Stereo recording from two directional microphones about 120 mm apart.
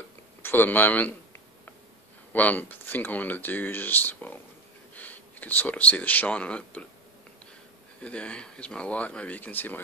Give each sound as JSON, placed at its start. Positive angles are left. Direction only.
{"t": 0.4, "sound": "speech", "side_deg": 15}
{"t": 2.3, "sound": "speech", "side_deg": 15}
{"t": 8.0, "sound": "speech", "side_deg": 10}